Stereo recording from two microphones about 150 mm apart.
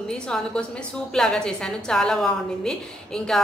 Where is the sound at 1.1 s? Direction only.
5° left (ahead or behind).